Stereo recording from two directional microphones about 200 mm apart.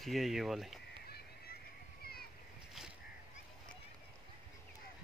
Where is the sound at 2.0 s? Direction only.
50° left (ahead or behind).